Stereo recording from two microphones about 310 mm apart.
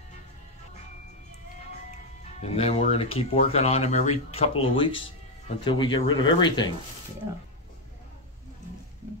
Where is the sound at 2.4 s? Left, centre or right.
Centre.